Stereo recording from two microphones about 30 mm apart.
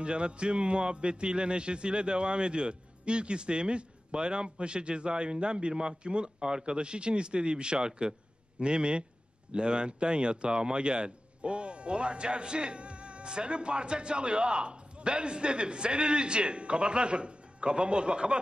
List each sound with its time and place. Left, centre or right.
0.0 s speech: right